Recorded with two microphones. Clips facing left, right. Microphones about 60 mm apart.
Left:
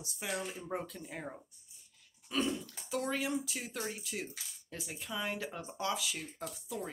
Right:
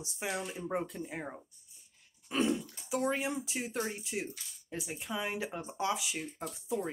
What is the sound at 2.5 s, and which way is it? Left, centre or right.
Speech, centre.